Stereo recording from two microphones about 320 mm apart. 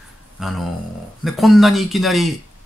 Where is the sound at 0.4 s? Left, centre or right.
Centre.